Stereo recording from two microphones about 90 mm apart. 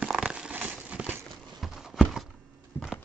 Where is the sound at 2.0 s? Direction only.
Centre (ahead or behind).